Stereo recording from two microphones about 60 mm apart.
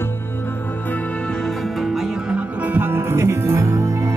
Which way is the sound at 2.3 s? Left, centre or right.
Right.